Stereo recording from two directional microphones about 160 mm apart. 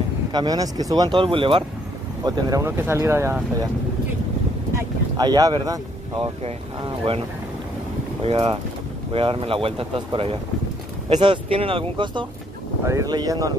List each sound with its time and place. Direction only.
0.3 s speech: 25° right (ahead or behind)
2.2 s speech: 20° right (ahead or behind)
5.1 s speech: 25° right (ahead or behind)
8.2 s speech: 35° right (ahead or behind)
12.8 s speech: 20° right (ahead or behind)